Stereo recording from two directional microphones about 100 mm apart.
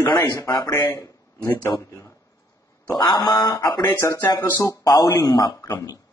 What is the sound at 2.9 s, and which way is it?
Speech, 45° left (ahead or behind).